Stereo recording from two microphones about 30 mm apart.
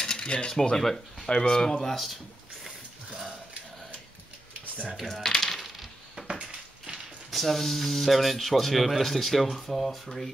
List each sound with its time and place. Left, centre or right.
0.0 s cutlery: left
0.7 s speech: centre
1.3 s speech: left
1.6 s speech: centre
5.0 s speech: centre
5.4 s coin: centre
6.2 s a sound: right
7.2 s speech: centre